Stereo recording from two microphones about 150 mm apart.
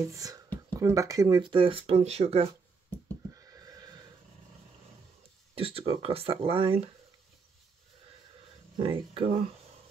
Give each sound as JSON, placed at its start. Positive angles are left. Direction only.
{"t": 0.1, "sound": "speech", "side_deg": -25}
{"t": 3.3, "sound": "neigh", "side_deg": -25}
{"t": 5.5, "sound": "speech", "side_deg": -40}
{"t": 8.7, "sound": "speech", "side_deg": -35}